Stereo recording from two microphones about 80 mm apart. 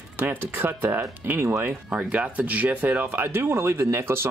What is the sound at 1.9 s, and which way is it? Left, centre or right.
Speech, centre.